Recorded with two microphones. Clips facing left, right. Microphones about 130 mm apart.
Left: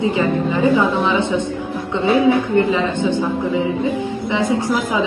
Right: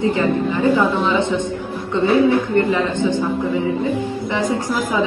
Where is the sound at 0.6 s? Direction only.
20° left (ahead or behind).